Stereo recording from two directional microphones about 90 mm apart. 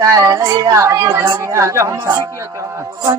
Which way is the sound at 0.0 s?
35° right (ahead or behind).